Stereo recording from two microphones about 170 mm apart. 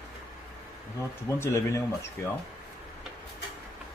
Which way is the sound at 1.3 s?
15° left (ahead or behind).